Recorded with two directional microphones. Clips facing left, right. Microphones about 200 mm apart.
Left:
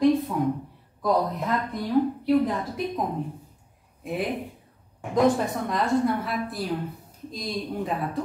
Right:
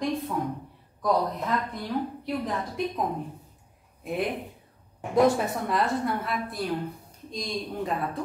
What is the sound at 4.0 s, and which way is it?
Speech, centre (ahead or behind).